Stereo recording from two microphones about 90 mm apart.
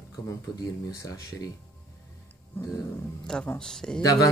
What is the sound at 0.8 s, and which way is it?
Speech, 45° left (ahead or behind).